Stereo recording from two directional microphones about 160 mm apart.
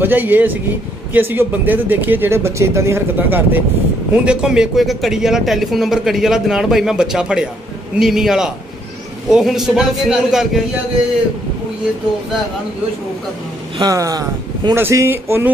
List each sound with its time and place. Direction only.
0.0 s a man's voice: 10° right (ahead or behind)
13.7 s speech: 20° right (ahead or behind)